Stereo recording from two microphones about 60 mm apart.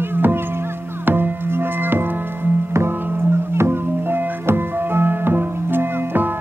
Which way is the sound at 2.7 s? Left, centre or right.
Right.